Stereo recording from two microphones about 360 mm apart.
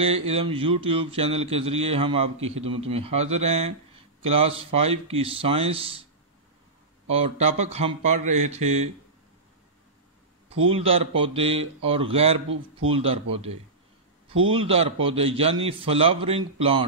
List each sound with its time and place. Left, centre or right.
0.0 s mantra: centre
7.1 s mantra: centre
10.7 s mantra: centre